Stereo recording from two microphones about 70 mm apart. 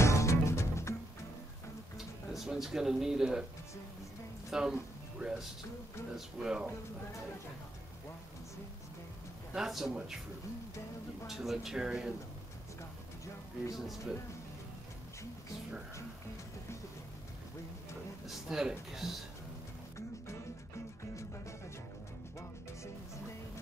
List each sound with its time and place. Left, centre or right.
0.0 s music: left
2.0 s speech: centre
4.5 s speech: centre
6.1 s speech: centre
9.5 s speech: centre
11.2 s speech: centre
13.7 s speech: centre
18.2 s speech: centre